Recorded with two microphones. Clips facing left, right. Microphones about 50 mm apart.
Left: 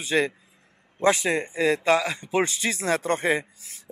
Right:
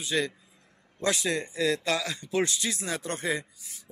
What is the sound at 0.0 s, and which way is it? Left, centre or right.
Speech, left.